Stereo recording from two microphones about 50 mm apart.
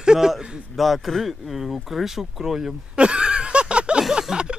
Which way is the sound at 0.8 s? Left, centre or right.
Centre.